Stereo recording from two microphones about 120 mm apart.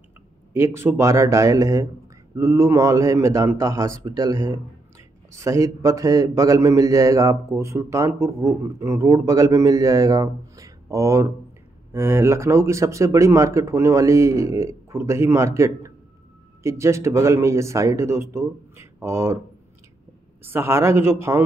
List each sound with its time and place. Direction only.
0.5 s a man's voice: 20° right (ahead or behind)
20.4 s a man's voice: 20° right (ahead or behind)